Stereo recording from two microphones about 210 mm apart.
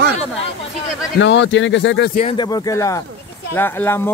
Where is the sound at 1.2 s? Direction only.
60° left (ahead or behind).